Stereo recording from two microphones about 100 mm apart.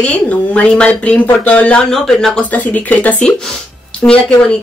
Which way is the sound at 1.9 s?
5° left (ahead or behind).